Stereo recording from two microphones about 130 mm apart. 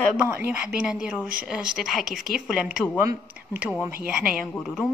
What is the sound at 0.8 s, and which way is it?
A woman's voice, 5° right (ahead or behind).